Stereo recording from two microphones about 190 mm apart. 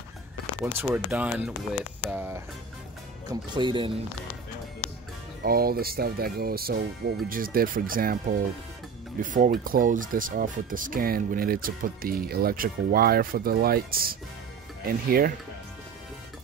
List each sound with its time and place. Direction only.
0.7 s speech: 10° right (ahead or behind)
3.3 s speech: 25° right (ahead or behind)
5.4 s speech: 55° right (ahead or behind)